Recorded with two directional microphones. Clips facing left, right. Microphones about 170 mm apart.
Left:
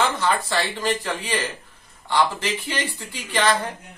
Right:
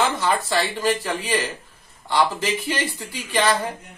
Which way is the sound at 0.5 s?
10° right (ahead or behind).